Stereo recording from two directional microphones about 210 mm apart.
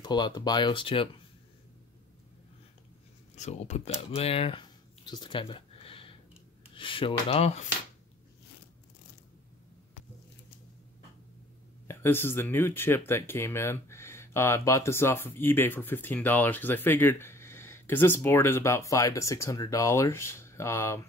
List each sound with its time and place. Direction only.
0.0 s speech: 20° left (ahead or behind)
3.3 s speech: 35° left (ahead or behind)
11.9 s speech: 10° left (ahead or behind)